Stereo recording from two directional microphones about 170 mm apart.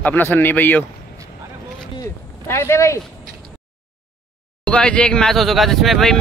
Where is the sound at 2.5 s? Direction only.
15° left (ahead or behind).